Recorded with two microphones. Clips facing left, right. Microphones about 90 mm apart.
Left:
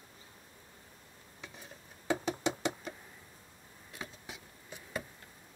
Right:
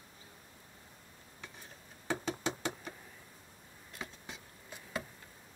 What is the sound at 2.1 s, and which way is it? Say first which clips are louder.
Knock: left 3 dB; 15° left (ahead or behind).